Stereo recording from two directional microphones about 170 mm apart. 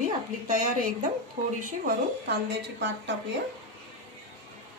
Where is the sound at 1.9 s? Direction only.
85° right.